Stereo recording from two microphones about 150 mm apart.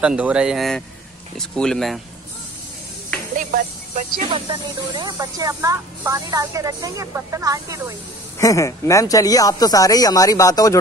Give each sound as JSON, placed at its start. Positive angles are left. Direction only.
{"t": 0.0, "sound": "a man's voice", "side_deg": -5}
{"t": 3.3, "sound": "music", "side_deg": -65}
{"t": 4.3, "sound": "speech", "side_deg": -30}
{"t": 8.4, "sound": "speech", "side_deg": 20}